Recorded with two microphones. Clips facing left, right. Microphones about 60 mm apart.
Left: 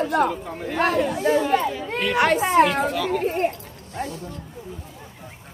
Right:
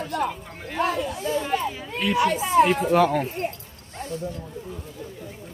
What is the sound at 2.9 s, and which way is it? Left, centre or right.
Speech, right.